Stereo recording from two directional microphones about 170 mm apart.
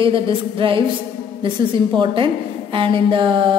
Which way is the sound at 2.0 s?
30° right (ahead or behind).